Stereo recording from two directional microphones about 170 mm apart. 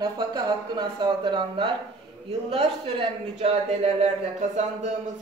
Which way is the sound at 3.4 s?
40° right (ahead or behind).